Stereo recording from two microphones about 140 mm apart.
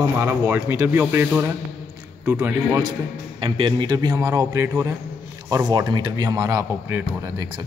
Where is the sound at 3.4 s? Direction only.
35° right (ahead or behind).